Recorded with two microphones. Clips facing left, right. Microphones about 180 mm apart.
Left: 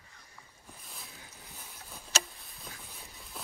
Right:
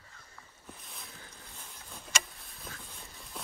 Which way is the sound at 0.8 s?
Centre (ahead or behind).